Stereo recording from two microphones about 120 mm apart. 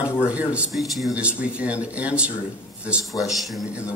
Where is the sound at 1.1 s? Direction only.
10° right (ahead or behind).